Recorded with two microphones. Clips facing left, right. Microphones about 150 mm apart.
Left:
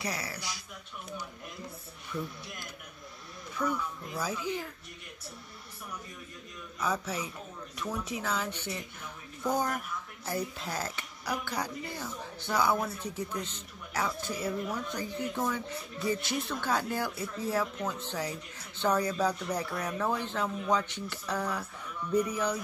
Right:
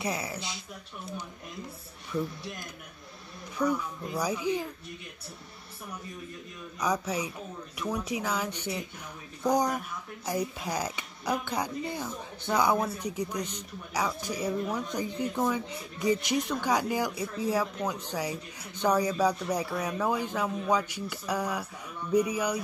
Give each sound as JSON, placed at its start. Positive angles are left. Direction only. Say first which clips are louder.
{"t": 0.0, "sound": "speech", "louder": "right 4 dB", "side_deg": -20}
{"t": 3.6, "sound": "speech", "louder": "right 4 dB", "side_deg": -15}
{"t": 6.8, "sound": "speech", "louder": "right 3 dB", "side_deg": -15}